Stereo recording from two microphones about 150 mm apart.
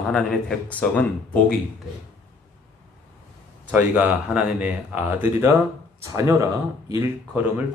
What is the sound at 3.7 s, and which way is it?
Speech, 10° right (ahead or behind).